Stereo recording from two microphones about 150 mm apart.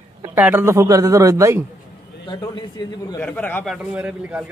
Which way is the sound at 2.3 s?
30° left (ahead or behind).